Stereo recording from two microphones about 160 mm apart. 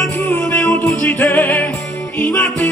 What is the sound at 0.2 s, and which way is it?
Music, 15° left (ahead or behind).